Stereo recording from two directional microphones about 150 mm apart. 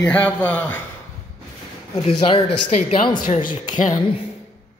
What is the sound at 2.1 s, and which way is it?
Speech, 35° left (ahead or behind).